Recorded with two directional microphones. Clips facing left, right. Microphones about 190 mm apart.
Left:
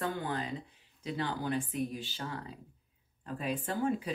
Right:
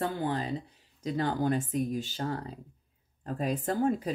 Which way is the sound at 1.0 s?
45° right (ahead or behind).